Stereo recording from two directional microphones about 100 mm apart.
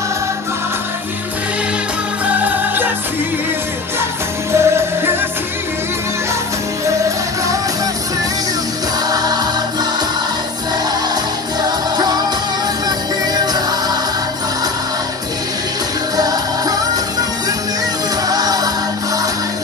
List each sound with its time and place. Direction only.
2.4 s music: 20° right (ahead or behind)
4.5 s music: 25° right (ahead or behind)
9.1 s music: 40° right (ahead or behind)
12.8 s music: 45° right (ahead or behind)
16.2 s music: 40° right (ahead or behind)
18.3 s music: 40° right (ahead or behind)